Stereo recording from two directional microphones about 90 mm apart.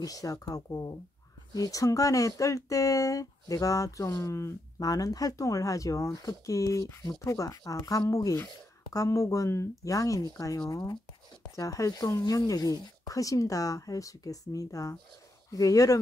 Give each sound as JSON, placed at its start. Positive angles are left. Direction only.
{"t": 0.0, "sound": "speech", "side_deg": 40}
{"t": 4.7, "sound": "speech", "side_deg": 45}